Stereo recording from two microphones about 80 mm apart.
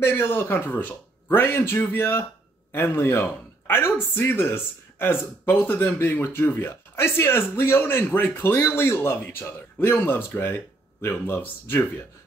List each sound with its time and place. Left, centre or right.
0.0 s speech: left